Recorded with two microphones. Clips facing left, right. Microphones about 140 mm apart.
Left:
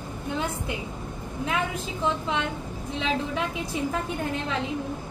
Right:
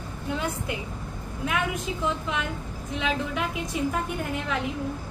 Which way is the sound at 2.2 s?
30° left (ahead or behind).